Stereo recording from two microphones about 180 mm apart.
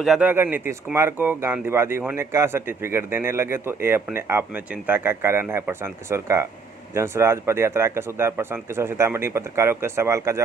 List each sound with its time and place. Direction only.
0.0 s speech: 5° right (ahead or behind)